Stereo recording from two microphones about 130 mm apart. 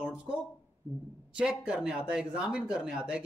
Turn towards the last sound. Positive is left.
turn(degrees=-5)  # may be behind; listen again after turning